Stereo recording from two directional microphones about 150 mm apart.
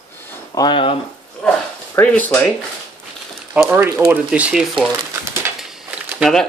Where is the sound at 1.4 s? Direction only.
10° left (ahead or behind).